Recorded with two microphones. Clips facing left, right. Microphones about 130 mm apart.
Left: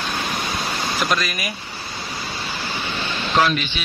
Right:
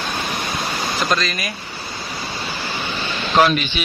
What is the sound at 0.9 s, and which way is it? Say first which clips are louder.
Speech: right 2 dB; 10° left (ahead or behind).